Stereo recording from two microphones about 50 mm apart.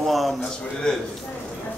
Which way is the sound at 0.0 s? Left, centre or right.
Centre.